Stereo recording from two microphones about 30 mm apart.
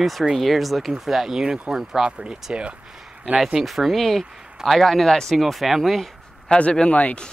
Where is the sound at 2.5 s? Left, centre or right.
Right.